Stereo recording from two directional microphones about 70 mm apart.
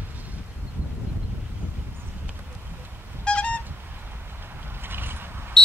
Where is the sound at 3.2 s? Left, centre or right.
Centre.